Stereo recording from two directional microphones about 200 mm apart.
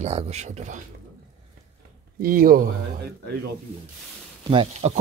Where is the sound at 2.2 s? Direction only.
45° right (ahead or behind).